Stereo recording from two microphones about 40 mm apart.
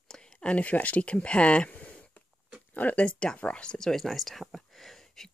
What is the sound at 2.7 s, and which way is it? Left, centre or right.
Speech, left.